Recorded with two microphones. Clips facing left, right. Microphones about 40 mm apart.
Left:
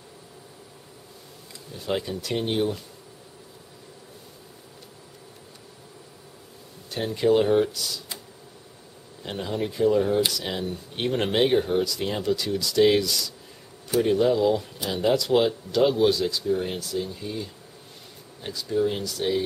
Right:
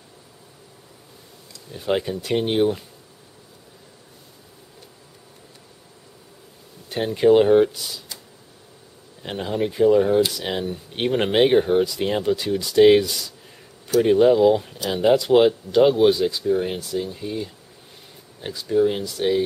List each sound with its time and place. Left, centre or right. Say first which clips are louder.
1.7 s speech: right 5 dB; right
7.2 s speech: right 6 dB; centre
9.2 s speech: right 4 dB; right